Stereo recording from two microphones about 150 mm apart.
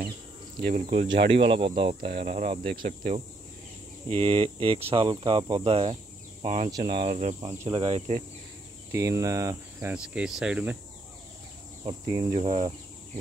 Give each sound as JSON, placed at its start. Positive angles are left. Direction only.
{"t": 0.8, "sound": "speech", "side_deg": -35}
{"t": 2.7, "sound": "speech", "side_deg": -65}
{"t": 4.1, "sound": "speech", "side_deg": -40}
{"t": 6.4, "sound": "speech", "side_deg": -50}
{"t": 7.3, "sound": "speech", "side_deg": -20}
{"t": 7.7, "sound": "speech", "side_deg": -40}
{"t": 8.9, "sound": "speech", "side_deg": -20}
{"t": 12.1, "sound": "speech", "side_deg": -25}